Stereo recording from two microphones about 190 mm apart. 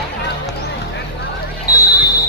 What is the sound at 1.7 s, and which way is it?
Basketball bounce, 20° left (ahead or behind).